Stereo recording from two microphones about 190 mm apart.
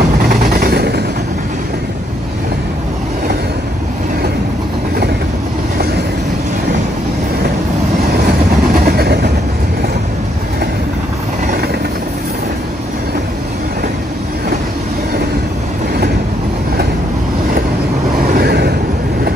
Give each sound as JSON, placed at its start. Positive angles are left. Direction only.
{"t": 0.3, "sound": "vehicle", "side_deg": -50}
{"t": 8.7, "sound": "train", "side_deg": -55}
{"t": 18.2, "sound": "vehicle", "side_deg": -50}